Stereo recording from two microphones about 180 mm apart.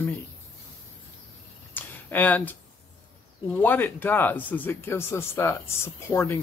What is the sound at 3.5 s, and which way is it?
Speech, 10° left (ahead or behind).